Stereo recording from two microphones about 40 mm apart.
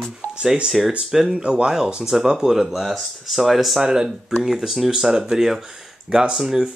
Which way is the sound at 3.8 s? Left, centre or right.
Centre.